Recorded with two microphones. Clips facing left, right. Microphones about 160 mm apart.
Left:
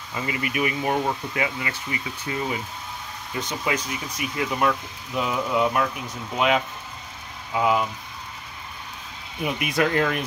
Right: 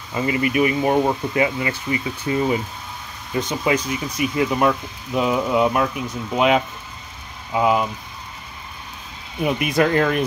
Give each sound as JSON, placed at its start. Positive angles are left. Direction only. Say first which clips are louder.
{"t": 0.1, "sound": "speech", "louder": "right 8 dB", "side_deg": -35}
{"t": 9.4, "sound": "speech", "louder": "right 5 dB", "side_deg": -35}